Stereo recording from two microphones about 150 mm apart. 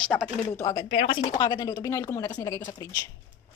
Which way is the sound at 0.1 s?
10° left (ahead or behind).